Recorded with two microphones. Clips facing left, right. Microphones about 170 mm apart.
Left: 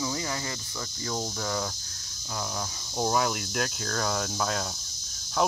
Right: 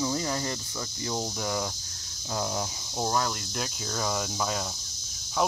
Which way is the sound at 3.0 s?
5° left (ahead or behind).